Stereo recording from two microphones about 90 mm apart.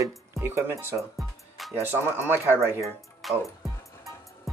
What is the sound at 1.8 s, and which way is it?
A man's voice, 25° right (ahead or behind).